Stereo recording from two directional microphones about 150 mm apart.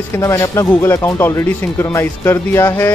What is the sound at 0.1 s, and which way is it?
Speech, 20° left (ahead or behind).